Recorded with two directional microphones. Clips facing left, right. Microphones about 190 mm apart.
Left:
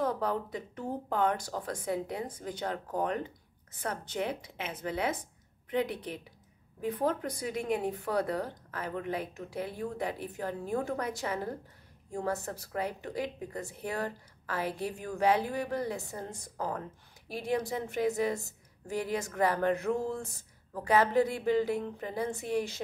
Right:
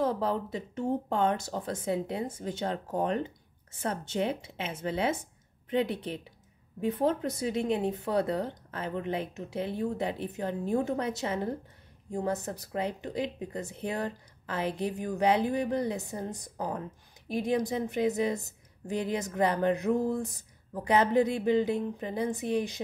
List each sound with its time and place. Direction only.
0.0 s a woman's voice: 25° right (ahead or behind)